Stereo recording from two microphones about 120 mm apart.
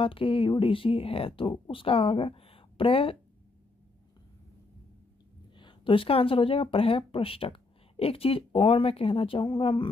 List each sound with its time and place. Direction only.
0.0 s speech: 45° left (ahead or behind)
5.6 s speech: 45° left (ahead or behind)